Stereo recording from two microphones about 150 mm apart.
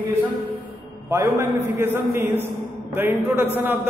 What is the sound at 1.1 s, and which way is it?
A man's voice, 20° right (ahead or behind).